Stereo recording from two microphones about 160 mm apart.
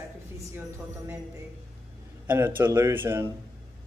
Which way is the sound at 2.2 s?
15° right (ahead or behind).